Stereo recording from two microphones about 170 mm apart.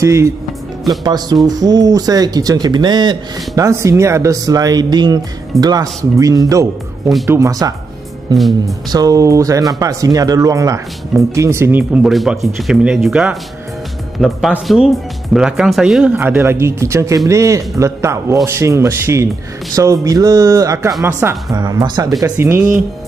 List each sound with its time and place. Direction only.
0.0 s speech: 15° right (ahead or behind)
8.4 s speech: centre (ahead or behind)
8.9 s speech: 20° right (ahead or behind)